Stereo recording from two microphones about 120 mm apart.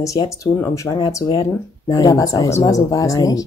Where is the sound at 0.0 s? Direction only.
25° left (ahead or behind).